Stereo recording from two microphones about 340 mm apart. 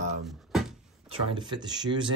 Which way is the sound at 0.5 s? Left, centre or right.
Centre.